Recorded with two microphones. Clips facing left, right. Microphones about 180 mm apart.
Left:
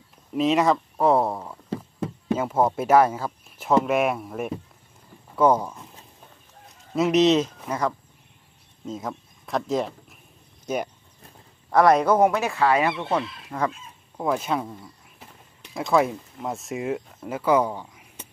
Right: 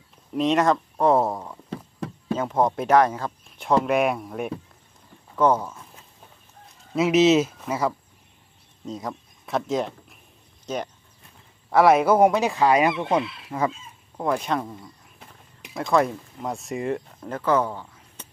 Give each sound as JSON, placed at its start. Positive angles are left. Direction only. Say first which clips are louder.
{"t": 0.3, "sound": "speech", "louder": "even", "side_deg": 0}
{"t": 1.7, "sound": "a sound", "louder": "left 4 dB", "side_deg": 25}
{"t": 2.3, "sound": "speech", "louder": "even", "side_deg": 5}
{"t": 6.9, "sound": "speech", "louder": "right 1 dB", "side_deg": 0}
{"t": 11.7, "sound": "speech", "louder": "right 1 dB", "side_deg": -5}
{"t": 13.2, "sound": "speech", "louder": "right 2 dB", "side_deg": 40}
{"t": 14.1, "sound": "speech", "louder": "even", "side_deg": 5}